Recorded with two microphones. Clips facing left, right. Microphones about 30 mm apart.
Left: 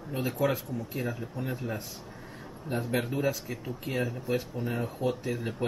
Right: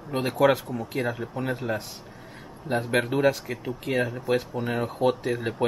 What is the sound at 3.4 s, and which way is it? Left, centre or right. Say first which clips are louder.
Speech: right 5 dB; right.